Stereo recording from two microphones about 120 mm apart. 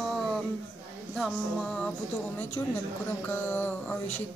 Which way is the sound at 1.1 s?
5° left (ahead or behind).